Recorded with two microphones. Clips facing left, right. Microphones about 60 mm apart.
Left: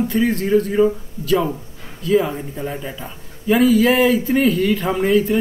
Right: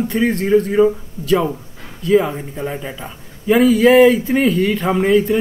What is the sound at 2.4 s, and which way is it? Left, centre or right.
Speech, centre.